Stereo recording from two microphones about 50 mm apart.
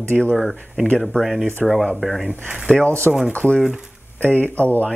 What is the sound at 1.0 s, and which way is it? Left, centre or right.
Speech, centre.